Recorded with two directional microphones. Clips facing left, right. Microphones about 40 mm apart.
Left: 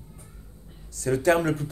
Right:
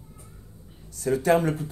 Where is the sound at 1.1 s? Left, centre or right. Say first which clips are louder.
Even; left.